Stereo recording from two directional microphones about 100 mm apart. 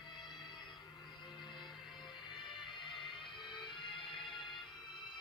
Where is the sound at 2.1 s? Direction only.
50° left (ahead or behind).